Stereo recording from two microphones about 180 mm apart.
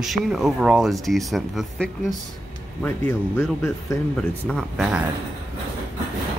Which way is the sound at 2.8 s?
15° left (ahead or behind).